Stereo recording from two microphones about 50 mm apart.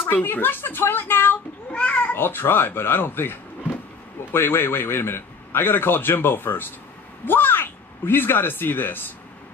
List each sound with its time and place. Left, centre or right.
0.0 s speech: left
1.7 s a sound: left
2.1 s a man's voice: left